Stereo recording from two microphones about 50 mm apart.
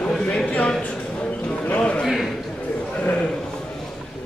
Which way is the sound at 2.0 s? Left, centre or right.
Centre.